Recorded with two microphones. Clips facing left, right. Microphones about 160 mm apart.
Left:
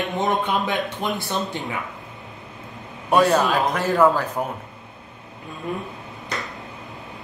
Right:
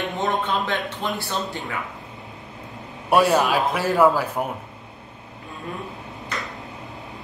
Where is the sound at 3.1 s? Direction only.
10° right (ahead or behind).